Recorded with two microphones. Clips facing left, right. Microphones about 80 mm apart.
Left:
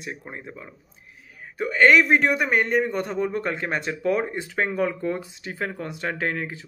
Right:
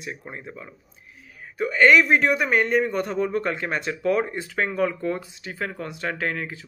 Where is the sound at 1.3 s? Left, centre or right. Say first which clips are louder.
Right 1 dB; left.